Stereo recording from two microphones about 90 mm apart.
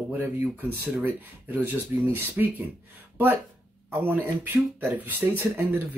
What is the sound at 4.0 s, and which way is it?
Speech, 20° right (ahead or behind).